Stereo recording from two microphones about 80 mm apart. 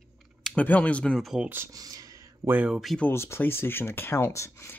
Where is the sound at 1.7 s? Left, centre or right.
Right.